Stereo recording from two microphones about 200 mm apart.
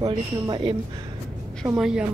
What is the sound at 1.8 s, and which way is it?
Speech, 5° right (ahead or behind).